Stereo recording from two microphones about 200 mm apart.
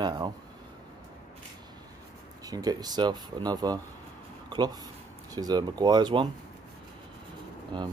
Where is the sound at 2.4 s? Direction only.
20° right (ahead or behind).